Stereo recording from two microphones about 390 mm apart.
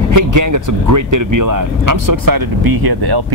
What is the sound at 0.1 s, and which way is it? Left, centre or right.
Speech, right.